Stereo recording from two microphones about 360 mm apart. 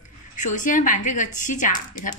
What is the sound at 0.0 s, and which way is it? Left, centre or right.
A woman's voice, left.